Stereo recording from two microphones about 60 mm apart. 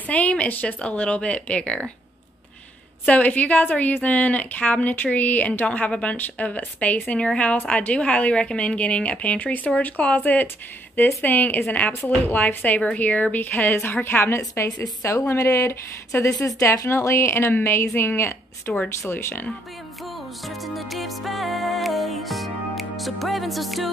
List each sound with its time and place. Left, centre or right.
0.0 s a woman's voice: left
3.1 s a woman's voice: left
14.5 s a woman's voice: left
20.4 s music: centre